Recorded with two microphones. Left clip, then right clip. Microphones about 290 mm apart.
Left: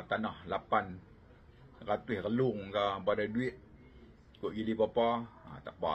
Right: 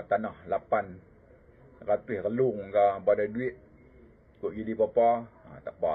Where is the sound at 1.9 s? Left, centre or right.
Left.